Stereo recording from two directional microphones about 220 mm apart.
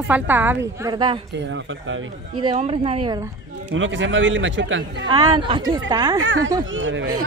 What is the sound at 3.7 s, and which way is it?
A man's voice, 60° right (ahead or behind).